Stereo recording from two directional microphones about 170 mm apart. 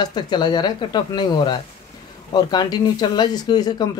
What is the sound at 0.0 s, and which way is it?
Speech, 25° left (ahead or behind).